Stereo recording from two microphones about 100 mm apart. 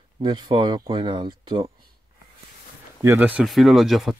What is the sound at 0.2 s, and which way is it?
Speech, 55° right (ahead or behind).